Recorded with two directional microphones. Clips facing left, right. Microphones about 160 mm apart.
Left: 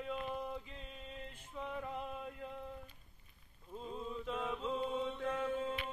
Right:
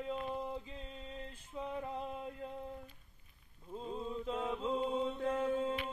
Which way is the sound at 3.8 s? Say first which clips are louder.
Right 3 dB; 30° right (ahead or behind).